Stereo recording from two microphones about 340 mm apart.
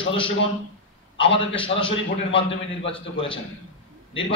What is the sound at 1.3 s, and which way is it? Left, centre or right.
A man's voice, centre.